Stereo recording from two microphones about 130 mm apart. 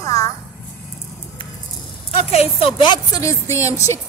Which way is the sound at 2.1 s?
50° left (ahead or behind).